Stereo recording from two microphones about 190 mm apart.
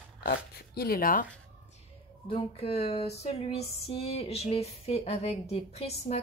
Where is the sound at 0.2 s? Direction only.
55° left (ahead or behind).